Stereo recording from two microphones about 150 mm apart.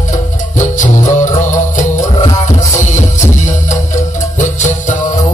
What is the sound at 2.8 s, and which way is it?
Music, 55° left (ahead or behind).